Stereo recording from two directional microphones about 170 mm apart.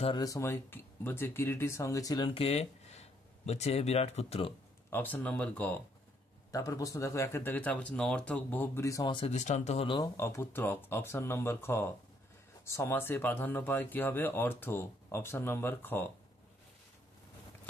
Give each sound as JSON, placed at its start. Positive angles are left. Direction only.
{"t": 0.0, "sound": "speech", "side_deg": 25}
{"t": 4.9, "sound": "speech", "side_deg": 10}
{"t": 6.5, "sound": "speech", "side_deg": 20}
{"t": 9.3, "sound": "speech", "side_deg": 45}
{"t": 10.1, "sound": "speech", "side_deg": 15}